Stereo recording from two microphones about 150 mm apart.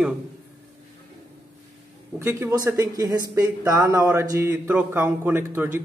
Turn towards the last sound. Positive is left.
turn(degrees=-15)  # may be behind; listen again after turning